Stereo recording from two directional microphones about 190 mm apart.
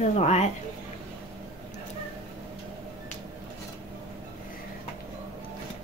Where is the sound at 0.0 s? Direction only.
40° left (ahead or behind).